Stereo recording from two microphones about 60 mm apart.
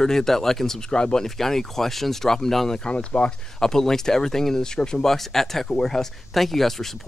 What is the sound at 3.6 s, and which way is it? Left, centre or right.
Speech, centre.